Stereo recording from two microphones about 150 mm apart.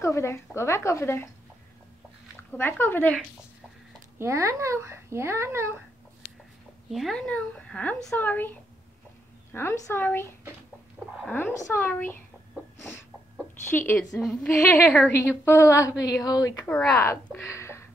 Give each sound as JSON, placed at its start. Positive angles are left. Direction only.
{"t": 0.0, "sound": "a woman's voice", "side_deg": 20}
{"t": 2.5, "sound": "speech", "side_deg": 15}
{"t": 4.2, "sound": "a child's voice", "side_deg": -20}
{"t": 6.9, "sound": "speech", "side_deg": 0}
{"t": 11.2, "sound": "speech", "side_deg": 15}
{"t": 13.7, "sound": "a woman's voice", "side_deg": 15}
{"t": 16.6, "sound": "speech", "side_deg": 10}